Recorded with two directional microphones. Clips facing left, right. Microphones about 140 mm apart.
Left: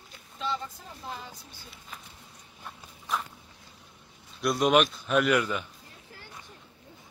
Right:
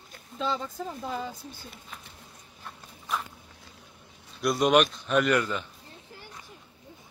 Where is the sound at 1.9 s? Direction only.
Centre (ahead or behind).